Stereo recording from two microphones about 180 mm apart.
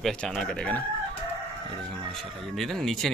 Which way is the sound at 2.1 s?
Centre (ahead or behind).